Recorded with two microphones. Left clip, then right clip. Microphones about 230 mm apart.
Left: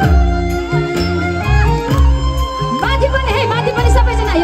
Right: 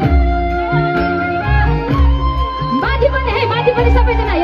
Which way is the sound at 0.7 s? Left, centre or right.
Left.